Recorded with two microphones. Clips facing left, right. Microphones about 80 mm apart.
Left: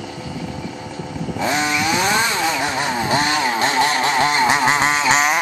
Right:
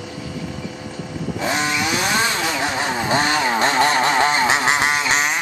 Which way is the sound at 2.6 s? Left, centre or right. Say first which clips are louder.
Left 1 dB; right.